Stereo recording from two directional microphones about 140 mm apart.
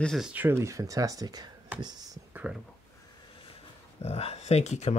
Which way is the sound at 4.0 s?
50° left (ahead or behind).